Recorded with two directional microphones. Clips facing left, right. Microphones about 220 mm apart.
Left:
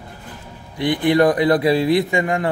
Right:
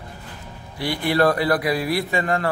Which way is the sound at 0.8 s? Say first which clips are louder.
Left 5 dB; 20° left (ahead or behind).